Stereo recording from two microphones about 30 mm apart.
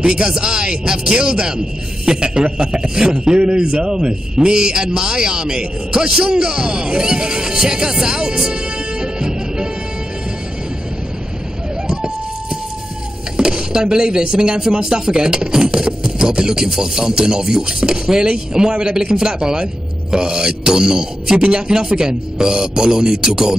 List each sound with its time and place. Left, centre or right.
0.3 s a man's voice: right
9.0 s music: right
13.4 s a man's voice: right
21.4 s a man's voice: right